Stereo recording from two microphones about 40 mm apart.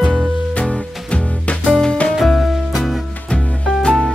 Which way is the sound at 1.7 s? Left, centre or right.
Centre.